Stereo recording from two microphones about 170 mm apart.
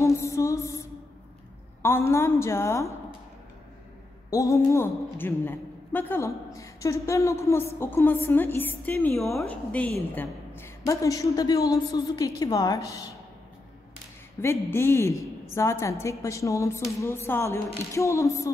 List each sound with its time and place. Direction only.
0.0 s music: 15° left (ahead or behind)
1.8 s a man's voice: 15° left (ahead or behind)
4.3 s a man's voice: 20° left (ahead or behind)
14.4 s a man's voice: 15° left (ahead or behind)